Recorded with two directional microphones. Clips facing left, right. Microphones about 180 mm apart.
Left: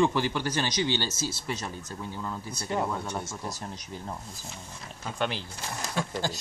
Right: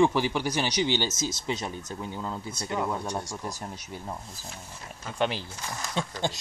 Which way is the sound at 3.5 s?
10° right (ahead or behind).